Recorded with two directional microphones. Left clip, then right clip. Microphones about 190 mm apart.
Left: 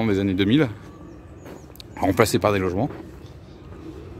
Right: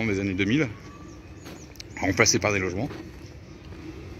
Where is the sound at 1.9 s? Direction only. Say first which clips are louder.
Left 2 dB; 20° left (ahead or behind).